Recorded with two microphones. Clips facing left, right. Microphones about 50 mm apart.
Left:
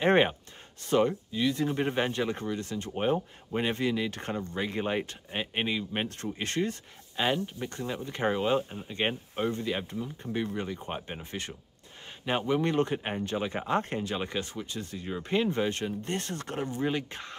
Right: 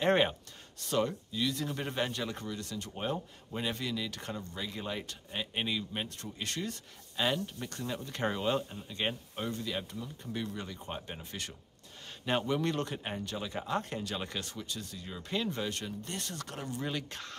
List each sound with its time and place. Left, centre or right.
0.0 s speech: left
6.0 s speech: left